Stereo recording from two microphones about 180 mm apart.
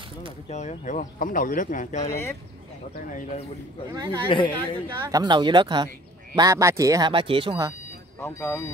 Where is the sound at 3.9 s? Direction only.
20° right (ahead or behind).